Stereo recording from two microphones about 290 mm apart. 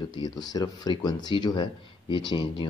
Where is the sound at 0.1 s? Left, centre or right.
Centre.